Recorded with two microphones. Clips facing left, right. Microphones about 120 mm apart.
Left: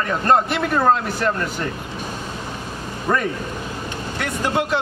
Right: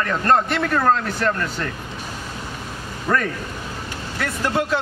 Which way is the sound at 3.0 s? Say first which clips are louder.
Left 1 dB; 15° left (ahead or behind).